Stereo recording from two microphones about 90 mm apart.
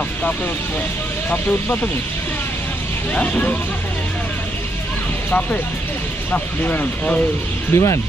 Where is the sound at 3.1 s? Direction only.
15° left (ahead or behind).